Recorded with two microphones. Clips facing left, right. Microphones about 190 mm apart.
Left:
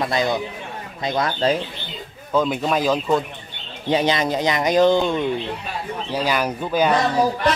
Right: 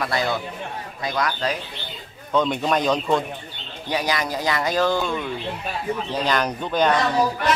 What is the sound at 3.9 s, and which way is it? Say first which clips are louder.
Speech: left 5 dB; 25° left (ahead or behind).